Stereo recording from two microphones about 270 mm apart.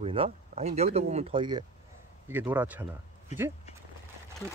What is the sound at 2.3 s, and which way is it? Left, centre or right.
Speech, centre.